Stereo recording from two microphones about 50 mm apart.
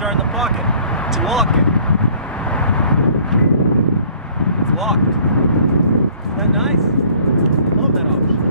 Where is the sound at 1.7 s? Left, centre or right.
Left.